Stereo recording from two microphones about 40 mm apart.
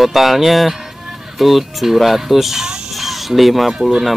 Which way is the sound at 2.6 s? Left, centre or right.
Centre.